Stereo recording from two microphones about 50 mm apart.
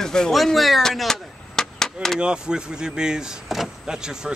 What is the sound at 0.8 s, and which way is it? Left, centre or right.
Chop, centre.